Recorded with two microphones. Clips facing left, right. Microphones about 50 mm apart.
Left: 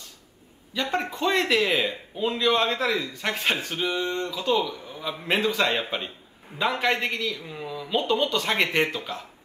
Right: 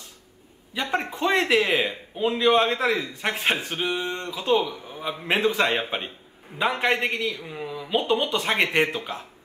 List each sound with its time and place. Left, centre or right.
0.7 s a man's voice: centre